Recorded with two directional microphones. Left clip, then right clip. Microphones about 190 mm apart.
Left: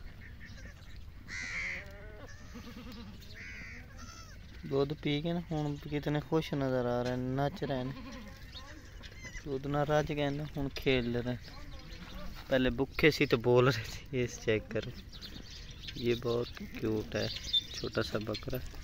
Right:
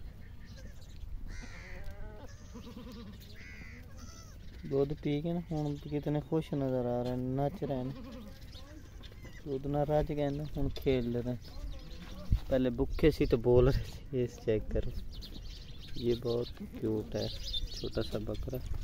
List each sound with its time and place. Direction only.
1.3 s crow: 40° right (ahead or behind)
3.3 s crow: 10° right (ahead or behind)
4.6 s speech: 10° right (ahead or behind)
9.6 s speech: 10° right (ahead or behind)
12.4 s speech: 10° right (ahead or behind)
16.3 s speech: 5° right (ahead or behind)